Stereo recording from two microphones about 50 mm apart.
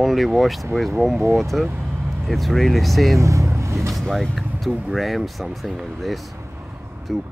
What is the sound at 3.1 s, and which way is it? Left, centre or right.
Vehicle, right.